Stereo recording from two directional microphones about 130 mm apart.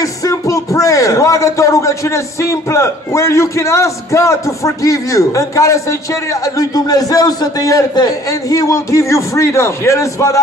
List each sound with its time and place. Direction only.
0.0 s a man's voice: 25° left (ahead or behind)